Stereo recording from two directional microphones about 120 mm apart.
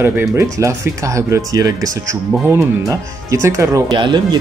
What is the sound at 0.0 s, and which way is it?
Speech, 20° right (ahead or behind).